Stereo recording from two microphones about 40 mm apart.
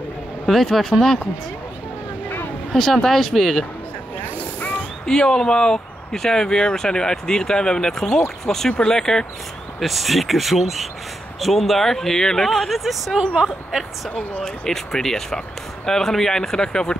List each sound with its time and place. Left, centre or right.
0.5 s speech: centre
0.9 s speech: centre
2.7 s speech: centre
4.2 s vehicle: left
5.0 s speech: centre
9.8 s speech: centre
12.4 s speech: centre
14.4 s speech: centre